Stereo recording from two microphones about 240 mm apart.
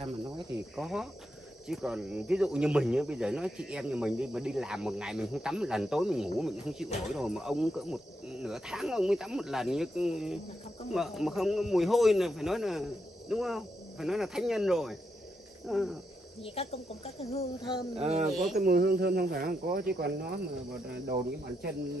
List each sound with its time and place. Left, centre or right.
0.7 s speech: centre
16.4 s speech: left
17.9 s speech: right
18.3 s speech: centre
18.6 s speech: right